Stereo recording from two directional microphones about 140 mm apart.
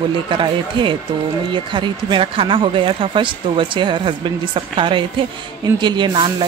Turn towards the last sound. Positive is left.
turn(degrees=-35)  # may be behind; listen again after turning